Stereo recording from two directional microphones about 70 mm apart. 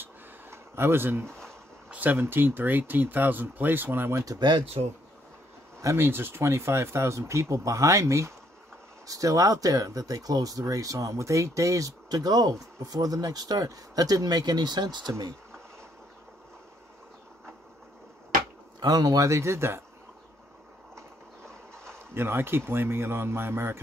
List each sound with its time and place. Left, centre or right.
0.0 s a sound: right
2.1 s speech: right
5.9 s speech: right
18.8 s speech: right
21.5 s a sound: centre
21.9 s speech: right